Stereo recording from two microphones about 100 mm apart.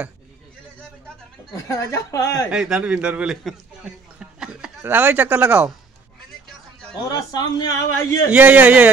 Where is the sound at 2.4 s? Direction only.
5° right (ahead or behind).